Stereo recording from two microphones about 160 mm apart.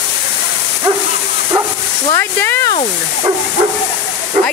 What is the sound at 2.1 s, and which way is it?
Speech, 15° left (ahead or behind).